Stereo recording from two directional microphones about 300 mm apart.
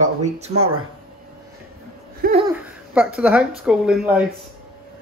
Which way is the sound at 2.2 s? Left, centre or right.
Right.